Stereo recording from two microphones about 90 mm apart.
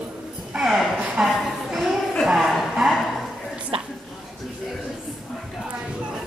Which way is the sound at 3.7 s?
90° right.